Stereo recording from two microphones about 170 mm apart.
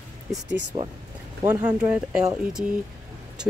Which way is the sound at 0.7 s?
25° right (ahead or behind).